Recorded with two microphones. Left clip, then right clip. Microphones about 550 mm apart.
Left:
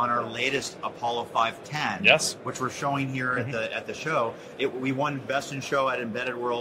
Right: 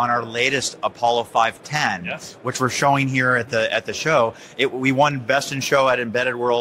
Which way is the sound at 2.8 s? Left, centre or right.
Right.